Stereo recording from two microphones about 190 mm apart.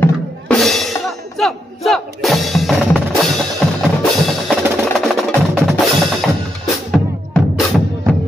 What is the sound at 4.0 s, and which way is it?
Percussion, centre (ahead or behind).